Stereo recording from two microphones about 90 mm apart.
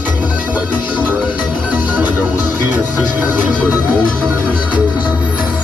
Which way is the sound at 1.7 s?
20° right (ahead or behind).